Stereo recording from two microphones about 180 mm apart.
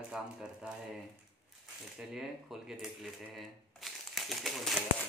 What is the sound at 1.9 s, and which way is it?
Speech, centre (ahead or behind).